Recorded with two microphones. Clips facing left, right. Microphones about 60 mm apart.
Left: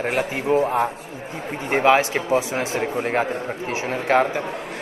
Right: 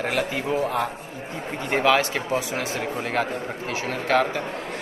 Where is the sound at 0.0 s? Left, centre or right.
Left.